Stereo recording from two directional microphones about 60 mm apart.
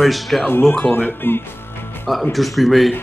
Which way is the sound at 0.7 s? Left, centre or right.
Left.